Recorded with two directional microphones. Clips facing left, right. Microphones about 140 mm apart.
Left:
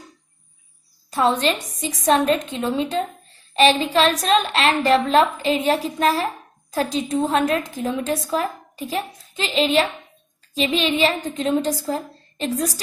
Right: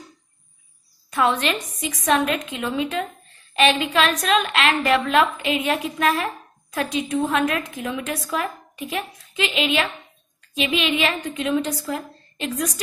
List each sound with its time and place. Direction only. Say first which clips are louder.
1.1 s a woman's voice: left 2 dB; 30° left (ahead or behind)